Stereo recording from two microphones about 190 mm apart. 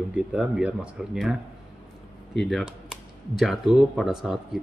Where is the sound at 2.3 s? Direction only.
Centre (ahead or behind).